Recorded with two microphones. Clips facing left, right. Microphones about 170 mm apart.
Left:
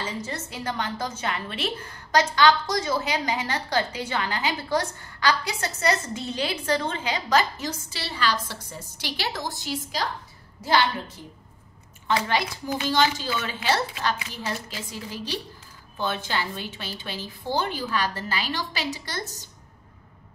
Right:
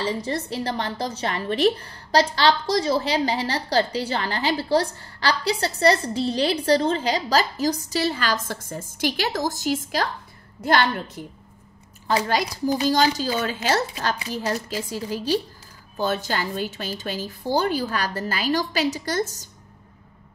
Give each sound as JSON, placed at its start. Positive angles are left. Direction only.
{"t": 0.0, "sound": "a woman's voice", "side_deg": -35}
{"t": 12.2, "sound": "a woman's voice", "side_deg": -40}